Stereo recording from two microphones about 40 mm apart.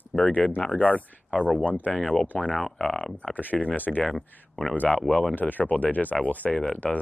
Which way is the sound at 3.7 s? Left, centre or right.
Left.